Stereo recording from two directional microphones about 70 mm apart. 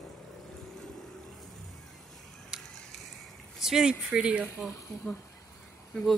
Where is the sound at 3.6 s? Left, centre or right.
Centre.